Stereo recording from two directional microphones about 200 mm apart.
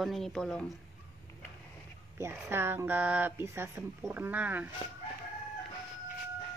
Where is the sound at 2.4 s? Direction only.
10° right (ahead or behind).